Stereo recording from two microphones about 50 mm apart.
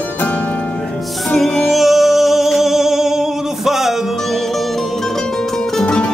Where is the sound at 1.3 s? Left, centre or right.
Centre.